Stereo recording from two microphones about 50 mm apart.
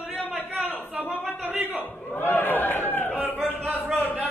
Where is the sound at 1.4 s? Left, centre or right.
Right.